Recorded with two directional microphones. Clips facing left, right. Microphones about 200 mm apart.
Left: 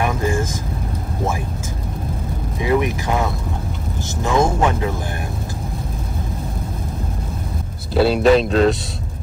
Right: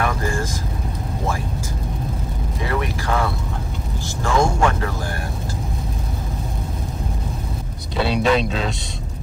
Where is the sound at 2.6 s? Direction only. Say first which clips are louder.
Left 6 dB; 15° left (ahead or behind).